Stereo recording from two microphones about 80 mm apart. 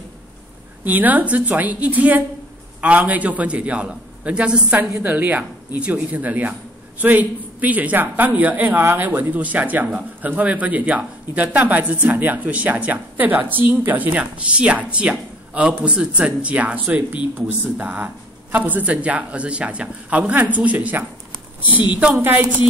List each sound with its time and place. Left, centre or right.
0.8 s a man's voice: right